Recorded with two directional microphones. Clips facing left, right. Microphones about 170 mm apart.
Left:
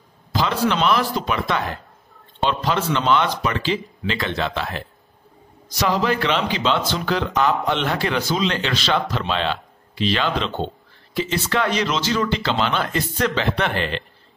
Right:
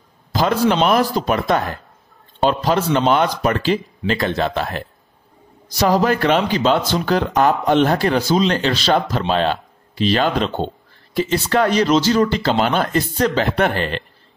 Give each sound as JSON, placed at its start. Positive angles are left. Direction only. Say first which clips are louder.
{"t": 0.3, "sound": "a man's voice", "louder": "right 4 dB", "side_deg": -45}